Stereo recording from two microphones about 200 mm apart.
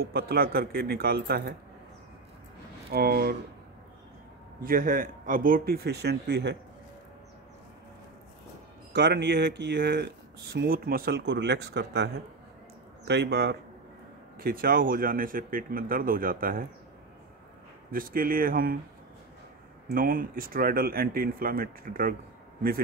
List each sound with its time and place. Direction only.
0.0 s speech: 50° right (ahead or behind)
2.9 s speech: 50° right (ahead or behind)
4.6 s speech: 45° right (ahead or behind)
8.9 s speech: 60° right (ahead or behind)
17.9 s speech: 45° right (ahead or behind)
19.9 s speech: 45° right (ahead or behind)